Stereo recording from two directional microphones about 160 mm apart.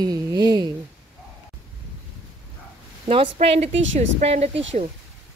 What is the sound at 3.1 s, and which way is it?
Speech, 35° right (ahead or behind).